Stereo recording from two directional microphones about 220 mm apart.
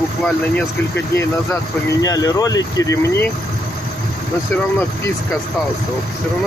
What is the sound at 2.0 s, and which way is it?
Speech, 15° left (ahead or behind).